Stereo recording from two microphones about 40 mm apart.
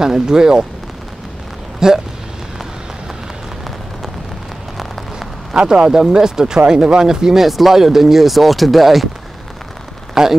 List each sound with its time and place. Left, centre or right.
0.0 s speech: centre
1.8 s speech: centre
5.6 s speech: right
7.4 s speech: centre
10.2 s speech: centre